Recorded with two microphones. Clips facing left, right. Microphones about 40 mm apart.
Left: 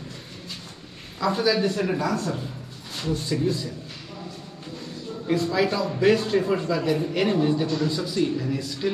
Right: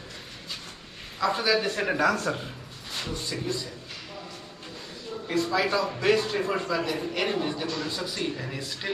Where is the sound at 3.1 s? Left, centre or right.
Centre.